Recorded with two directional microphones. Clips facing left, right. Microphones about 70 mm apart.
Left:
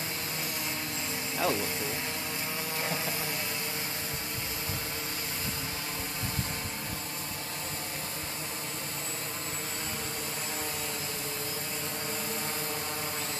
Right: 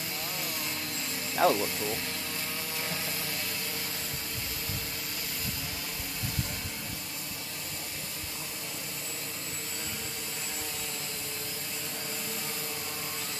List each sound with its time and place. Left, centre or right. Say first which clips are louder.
1.4 s speech: right 5 dB; right